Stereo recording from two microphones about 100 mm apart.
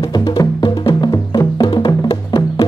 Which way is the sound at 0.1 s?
45° left (ahead or behind).